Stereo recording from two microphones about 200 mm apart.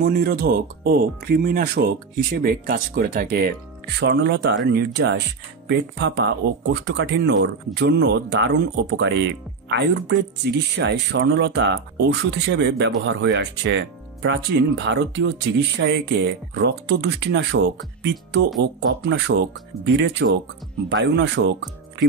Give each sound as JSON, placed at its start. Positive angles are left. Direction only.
{"t": 0.0, "sound": "speech", "side_deg": -50}